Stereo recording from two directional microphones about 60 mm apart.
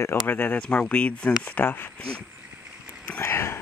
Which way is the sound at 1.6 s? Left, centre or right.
Left.